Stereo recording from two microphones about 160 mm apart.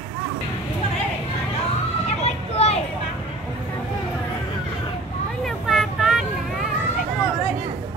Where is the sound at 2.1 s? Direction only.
40° left (ahead or behind).